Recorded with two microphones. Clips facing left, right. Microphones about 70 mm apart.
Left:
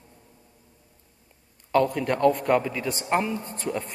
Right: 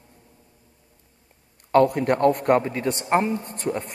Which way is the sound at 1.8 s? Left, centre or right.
Right.